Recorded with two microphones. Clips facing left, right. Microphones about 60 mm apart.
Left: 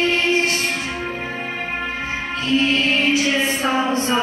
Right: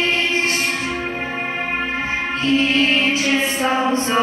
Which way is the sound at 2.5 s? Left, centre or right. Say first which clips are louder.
Even; right.